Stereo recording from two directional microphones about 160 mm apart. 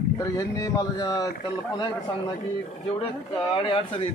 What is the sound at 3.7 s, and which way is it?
Speech, 35° left (ahead or behind).